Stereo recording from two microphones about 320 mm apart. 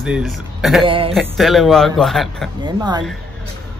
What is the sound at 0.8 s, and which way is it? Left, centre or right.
Speech, centre.